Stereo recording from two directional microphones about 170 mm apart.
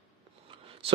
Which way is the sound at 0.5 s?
35° right (ahead or behind).